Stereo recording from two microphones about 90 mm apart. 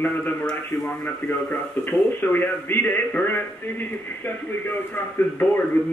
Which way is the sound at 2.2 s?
20° left (ahead or behind).